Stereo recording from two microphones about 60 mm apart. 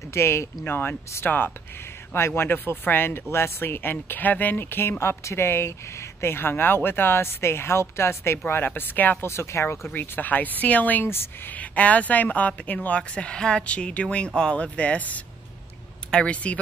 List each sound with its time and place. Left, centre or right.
0.1 s speech: left
0.7 s speech: left
9.2 s speech: left
9.8 s speech: left
11.1 s speech: left
11.5 s speech: left